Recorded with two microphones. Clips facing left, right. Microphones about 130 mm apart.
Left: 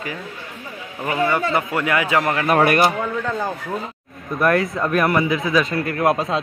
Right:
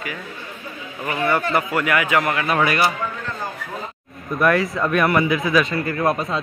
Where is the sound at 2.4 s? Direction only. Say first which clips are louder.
Left 3 dB; 50° left (ahead or behind).